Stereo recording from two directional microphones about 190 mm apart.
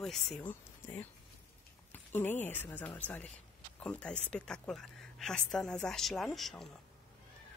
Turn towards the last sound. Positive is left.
turn(degrees=0)  # may be behind; listen again after turning